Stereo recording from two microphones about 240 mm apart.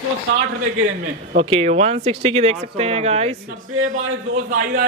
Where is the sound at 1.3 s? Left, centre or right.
Right.